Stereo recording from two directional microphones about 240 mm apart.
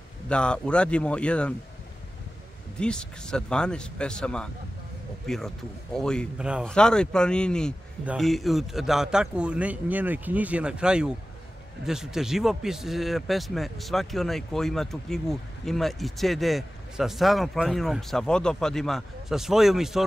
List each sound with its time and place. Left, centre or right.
0.3 s speech: centre
2.8 s speech: centre